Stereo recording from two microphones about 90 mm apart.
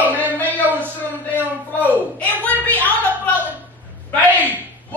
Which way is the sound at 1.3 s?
20° left (ahead or behind).